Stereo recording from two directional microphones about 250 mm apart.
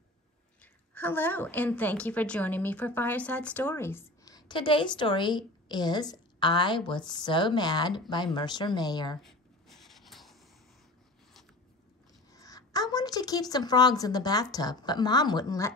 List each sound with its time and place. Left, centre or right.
0.6 s a woman's voice: centre
9.2 s writing: centre
12.3 s a woman's voice: centre